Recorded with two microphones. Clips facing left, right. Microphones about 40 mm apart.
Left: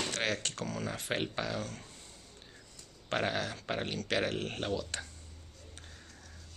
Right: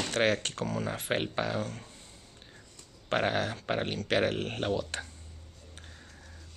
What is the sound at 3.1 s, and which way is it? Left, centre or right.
Speech, right.